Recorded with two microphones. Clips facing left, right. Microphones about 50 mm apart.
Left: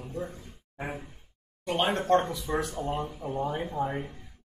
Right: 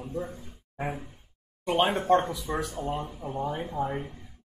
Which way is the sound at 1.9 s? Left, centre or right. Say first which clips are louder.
Right 1 dB; centre.